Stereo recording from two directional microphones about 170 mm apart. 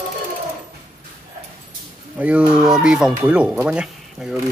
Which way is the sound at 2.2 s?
5° right (ahead or behind).